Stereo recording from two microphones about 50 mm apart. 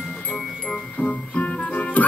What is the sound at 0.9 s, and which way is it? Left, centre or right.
Music, left.